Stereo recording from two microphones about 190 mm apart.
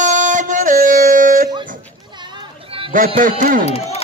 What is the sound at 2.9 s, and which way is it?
Speech, 45° right (ahead or behind).